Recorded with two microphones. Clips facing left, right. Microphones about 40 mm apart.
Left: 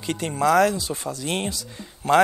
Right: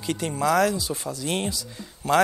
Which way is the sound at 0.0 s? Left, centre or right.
Left.